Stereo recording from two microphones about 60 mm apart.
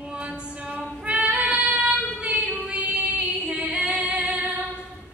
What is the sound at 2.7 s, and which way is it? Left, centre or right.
Female singing, right.